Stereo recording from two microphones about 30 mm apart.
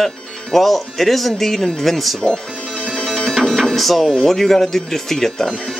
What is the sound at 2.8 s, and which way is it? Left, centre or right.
Music, right.